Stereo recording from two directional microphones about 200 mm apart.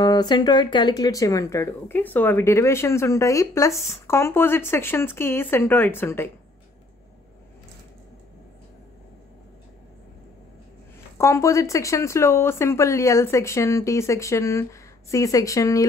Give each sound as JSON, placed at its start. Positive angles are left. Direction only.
{"t": 0.0, "sound": "speech", "side_deg": 20}
{"t": 11.1, "sound": "speech", "side_deg": 15}